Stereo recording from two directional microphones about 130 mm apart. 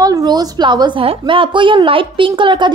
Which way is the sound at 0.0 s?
30° right (ahead or behind).